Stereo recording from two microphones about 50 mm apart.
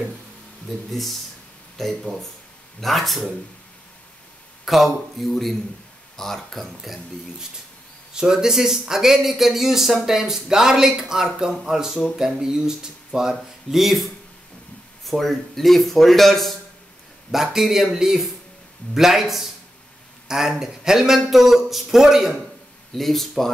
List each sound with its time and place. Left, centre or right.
1.8 s speech: centre
4.6 s speech: centre
17.3 s speech: centre
22.9 s speech: centre